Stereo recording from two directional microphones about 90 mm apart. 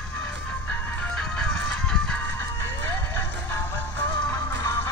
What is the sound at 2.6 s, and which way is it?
Music, 30° left (ahead or behind).